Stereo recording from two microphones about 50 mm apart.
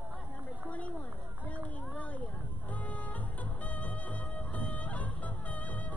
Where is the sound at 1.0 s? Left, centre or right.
Left.